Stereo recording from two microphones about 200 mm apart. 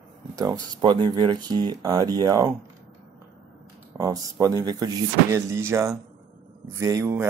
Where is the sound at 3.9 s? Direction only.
15° right (ahead or behind).